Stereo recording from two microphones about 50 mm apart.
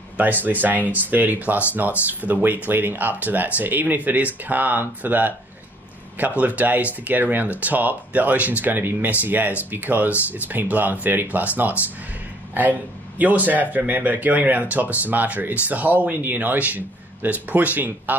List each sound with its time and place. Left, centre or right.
0.2 s speech: right
13.2 s speech: right